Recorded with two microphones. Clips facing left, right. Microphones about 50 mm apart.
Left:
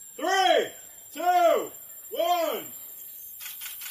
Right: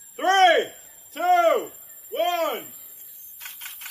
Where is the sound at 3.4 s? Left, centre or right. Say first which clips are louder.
Right 3 dB; right.